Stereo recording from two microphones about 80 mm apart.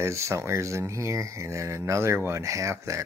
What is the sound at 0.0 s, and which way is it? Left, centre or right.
Speech, right.